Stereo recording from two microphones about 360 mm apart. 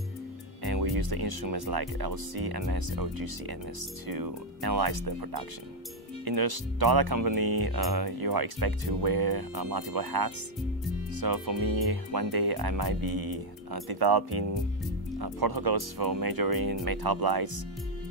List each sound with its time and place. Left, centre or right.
0.7 s speech: right